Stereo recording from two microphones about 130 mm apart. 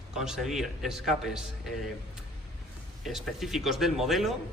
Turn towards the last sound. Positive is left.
turn(degrees=0)  # may be behind; listen again after turning